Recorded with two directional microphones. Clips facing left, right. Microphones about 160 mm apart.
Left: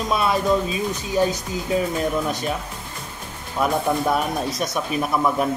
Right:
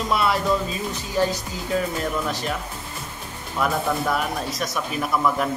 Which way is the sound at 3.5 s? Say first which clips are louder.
Left 2 dB; 20° left (ahead or behind).